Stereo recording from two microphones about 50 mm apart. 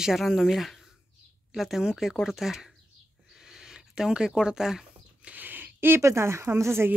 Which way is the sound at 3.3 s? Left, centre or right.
Centre.